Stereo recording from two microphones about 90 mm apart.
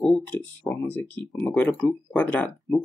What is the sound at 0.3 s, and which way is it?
Speech, 20° left (ahead or behind).